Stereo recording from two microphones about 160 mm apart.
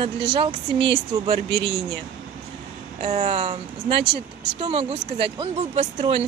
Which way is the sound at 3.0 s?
45° right (ahead or behind).